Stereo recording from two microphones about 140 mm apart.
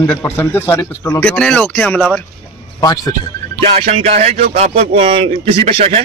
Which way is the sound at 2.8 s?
25° left (ahead or behind).